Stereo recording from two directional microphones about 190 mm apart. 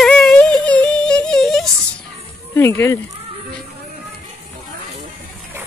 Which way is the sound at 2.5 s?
15° left (ahead or behind).